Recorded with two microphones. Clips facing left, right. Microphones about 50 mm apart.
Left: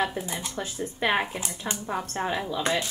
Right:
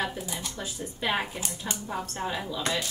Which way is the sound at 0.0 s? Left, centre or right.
Left.